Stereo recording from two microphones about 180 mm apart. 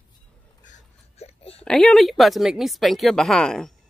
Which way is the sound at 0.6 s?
40° left (ahead or behind).